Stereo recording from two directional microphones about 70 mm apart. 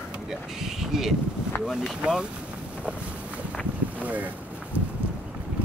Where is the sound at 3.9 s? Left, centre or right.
Right.